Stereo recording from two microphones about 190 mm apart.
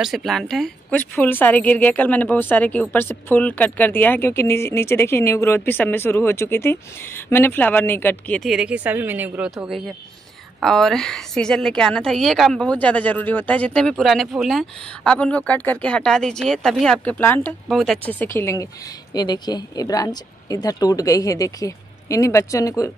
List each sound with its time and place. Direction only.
0.0 s a woman's voice: centre (ahead or behind); by 22.9 s 15° left (ahead or behind)